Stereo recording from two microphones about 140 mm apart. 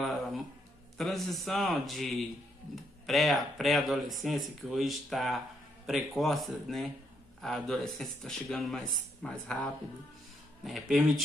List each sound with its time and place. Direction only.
0.9 s speech: centre (ahead or behind)